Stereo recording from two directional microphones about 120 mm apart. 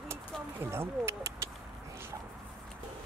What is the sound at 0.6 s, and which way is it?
Speech, 20° right (ahead or behind).